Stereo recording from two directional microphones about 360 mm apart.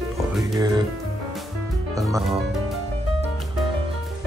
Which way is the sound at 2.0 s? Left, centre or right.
Centre.